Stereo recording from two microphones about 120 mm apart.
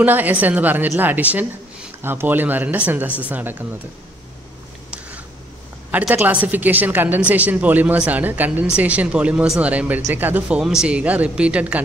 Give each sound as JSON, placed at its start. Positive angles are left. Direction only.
{"t": 0.0, "sound": "a woman's voice", "side_deg": -15}
{"t": 5.9, "sound": "a woman's voice", "side_deg": -15}